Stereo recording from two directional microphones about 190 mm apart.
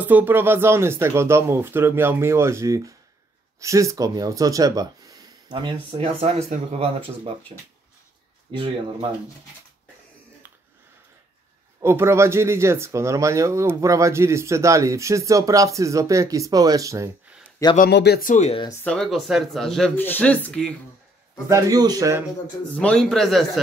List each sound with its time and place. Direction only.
0.0 s speech: 10° right (ahead or behind); by 7.3 s 30° right (ahead or behind)
8.5 s speech: 25° right (ahead or behind)
11.8 s speech: 15° right (ahead or behind)
17.7 s speech: 55° left (ahead or behind)
18.3 s speech: 35° left (ahead or behind)
18.9 s speech: centre (ahead or behind)
21.5 s speech: 15° right (ahead or behind)
22.8 s speech: 5° left (ahead or behind)